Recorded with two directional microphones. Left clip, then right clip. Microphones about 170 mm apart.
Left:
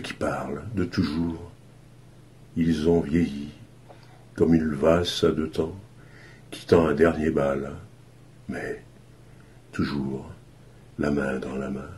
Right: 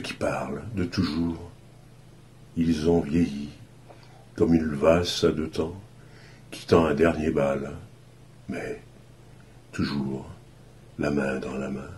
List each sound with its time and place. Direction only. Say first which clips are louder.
0.0 s speech: even; 40° left (ahead or behind)
2.6 s speech: left 1 dB; 40° left (ahead or behind)